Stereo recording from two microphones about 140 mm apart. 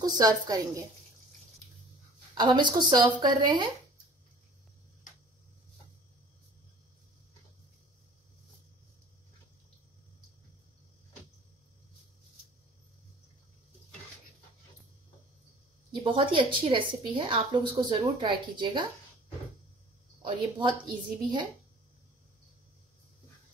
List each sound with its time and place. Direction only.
0.0 s a woman's voice: 25° right (ahead or behind)
2.3 s a woman's voice: 30° right (ahead or behind)
15.9 s a woman's voice: 35° right (ahead or behind)
20.2 s a woman's voice: 35° right (ahead or behind)